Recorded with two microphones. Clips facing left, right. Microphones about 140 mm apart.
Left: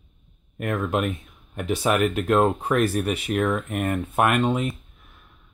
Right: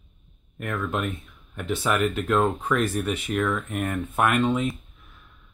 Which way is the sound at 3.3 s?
35° left (ahead or behind).